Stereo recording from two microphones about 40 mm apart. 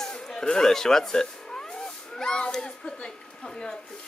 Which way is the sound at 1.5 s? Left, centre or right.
Centre.